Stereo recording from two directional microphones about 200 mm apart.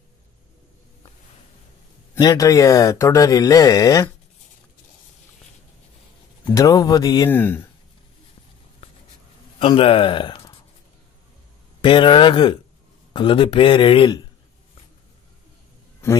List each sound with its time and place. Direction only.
2.1 s speech: 20° left (ahead or behind)
6.5 s speech: 20° left (ahead or behind)
9.6 s speech: 30° left (ahead or behind)
11.8 s speech: 25° left (ahead or behind)
16.0 s speech: 15° left (ahead or behind)